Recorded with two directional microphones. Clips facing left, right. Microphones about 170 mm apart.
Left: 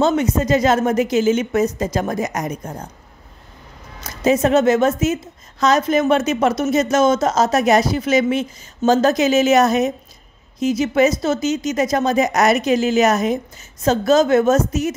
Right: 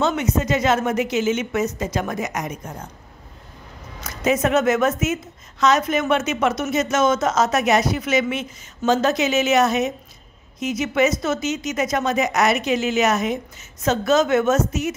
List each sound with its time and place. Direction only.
0.0 s a woman's voice: 35° left (ahead or behind)
4.0 s a woman's voice: 30° left (ahead or behind)